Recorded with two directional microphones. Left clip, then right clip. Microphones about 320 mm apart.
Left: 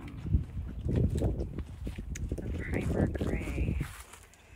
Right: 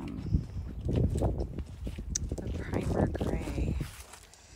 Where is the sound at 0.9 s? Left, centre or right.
Centre.